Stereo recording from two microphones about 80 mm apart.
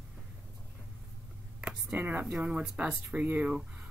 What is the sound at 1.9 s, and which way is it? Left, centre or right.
Speech, right.